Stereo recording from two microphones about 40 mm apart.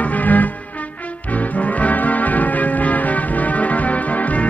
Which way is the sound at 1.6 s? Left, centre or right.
Left.